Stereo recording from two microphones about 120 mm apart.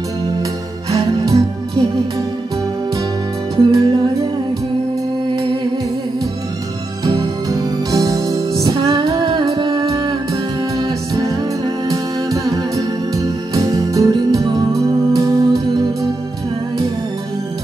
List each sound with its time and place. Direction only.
0.9 s music: 35° right (ahead or behind)
3.5 s music: 40° right (ahead or behind)
7.1 s music: 30° right (ahead or behind)